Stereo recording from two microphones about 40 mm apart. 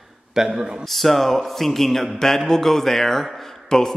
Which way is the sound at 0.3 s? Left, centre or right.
Centre.